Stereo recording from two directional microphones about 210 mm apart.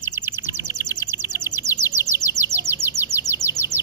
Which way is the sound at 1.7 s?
15° left (ahead or behind).